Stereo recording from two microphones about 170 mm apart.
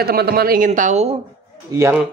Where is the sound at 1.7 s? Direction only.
15° right (ahead or behind).